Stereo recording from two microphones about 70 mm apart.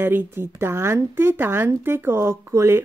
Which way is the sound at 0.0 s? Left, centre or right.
Right.